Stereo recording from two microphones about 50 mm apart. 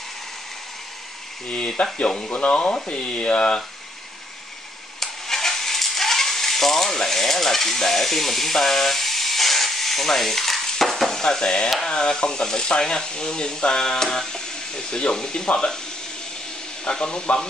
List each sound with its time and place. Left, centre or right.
2.0 s speech: centre
5.0 s coin: centre
11.8 s speech: centre
16.8 s speech: centre